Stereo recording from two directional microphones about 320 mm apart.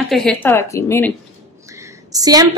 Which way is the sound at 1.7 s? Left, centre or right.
Centre.